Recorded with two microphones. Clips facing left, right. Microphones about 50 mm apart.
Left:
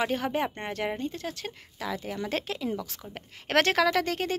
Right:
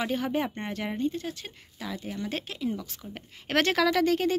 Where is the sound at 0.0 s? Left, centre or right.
Left.